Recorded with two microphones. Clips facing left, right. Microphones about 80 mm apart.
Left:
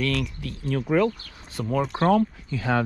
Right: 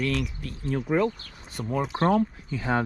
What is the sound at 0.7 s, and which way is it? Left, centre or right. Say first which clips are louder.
Speech: left 2 dB; left.